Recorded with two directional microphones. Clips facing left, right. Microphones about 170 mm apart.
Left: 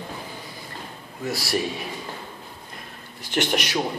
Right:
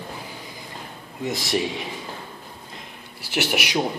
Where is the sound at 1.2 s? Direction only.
20° right (ahead or behind).